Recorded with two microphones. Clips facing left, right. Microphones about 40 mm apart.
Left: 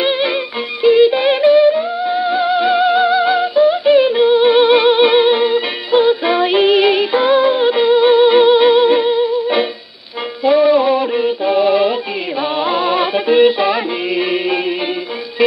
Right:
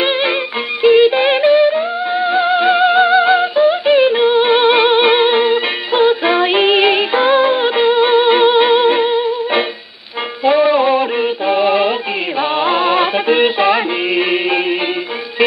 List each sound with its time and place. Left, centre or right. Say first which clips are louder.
0.0 s music: right 1 dB; centre
10.6 s synthetic singing: even; centre
11.6 s music: even; centre